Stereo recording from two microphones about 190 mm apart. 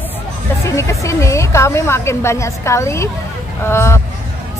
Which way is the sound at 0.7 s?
15° left (ahead or behind).